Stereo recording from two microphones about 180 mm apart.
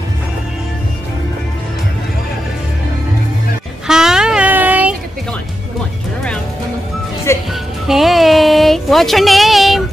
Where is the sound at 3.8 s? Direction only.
5° right (ahead or behind).